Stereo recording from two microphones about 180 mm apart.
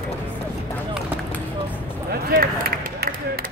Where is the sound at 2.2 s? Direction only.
55° right (ahead or behind).